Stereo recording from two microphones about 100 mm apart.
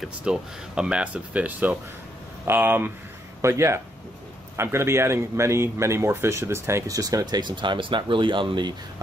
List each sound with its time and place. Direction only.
0.0 s speech: 10° right (ahead or behind); by 8.7 s 50° right (ahead or behind)